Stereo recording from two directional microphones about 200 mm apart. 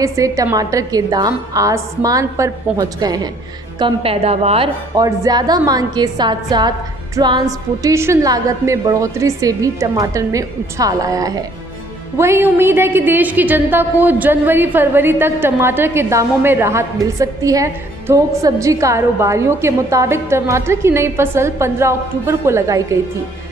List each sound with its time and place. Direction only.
0.0 s a woman's voice: 15° right (ahead or behind)
4.9 s a woman's voice: 20° right (ahead or behind)